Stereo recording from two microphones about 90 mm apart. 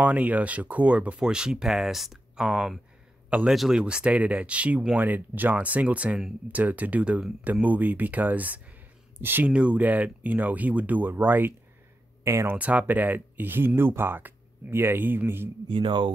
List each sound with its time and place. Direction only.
0.0 s speech: 15° right (ahead or behind)
12.5 s speech: 15° right (ahead or behind)
15.7 s speech: 65° right (ahead or behind)